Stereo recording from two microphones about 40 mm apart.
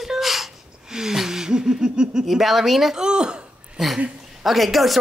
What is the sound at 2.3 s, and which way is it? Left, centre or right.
Speech, centre.